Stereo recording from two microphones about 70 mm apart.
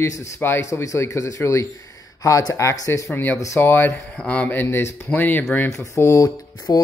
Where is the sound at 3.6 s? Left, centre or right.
Left.